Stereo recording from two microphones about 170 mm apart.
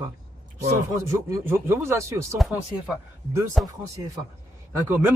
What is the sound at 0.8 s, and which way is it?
Speech, 20° right (ahead or behind).